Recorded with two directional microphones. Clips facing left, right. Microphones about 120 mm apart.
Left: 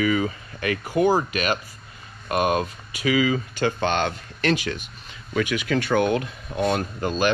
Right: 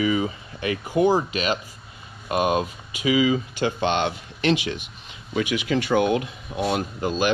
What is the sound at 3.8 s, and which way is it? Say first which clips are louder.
Speech: right 2 dB; 45° left (ahead or behind).